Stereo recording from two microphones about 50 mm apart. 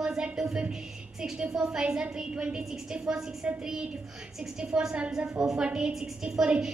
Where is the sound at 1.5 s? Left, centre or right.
Centre.